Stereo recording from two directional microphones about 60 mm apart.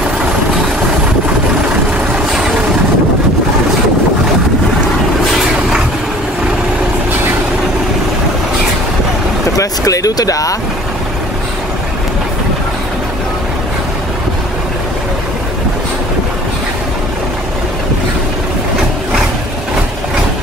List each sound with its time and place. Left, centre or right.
9.6 s speech: left